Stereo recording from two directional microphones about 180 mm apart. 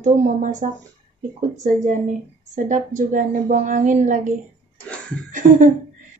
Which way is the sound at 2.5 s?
45° right (ahead or behind).